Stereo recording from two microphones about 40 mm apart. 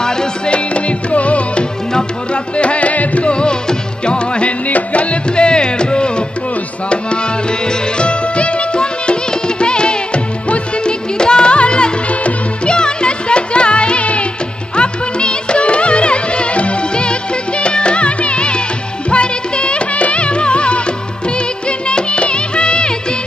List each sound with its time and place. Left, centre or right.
0.5 s music: left
7.6 s music: left
12.7 s music: left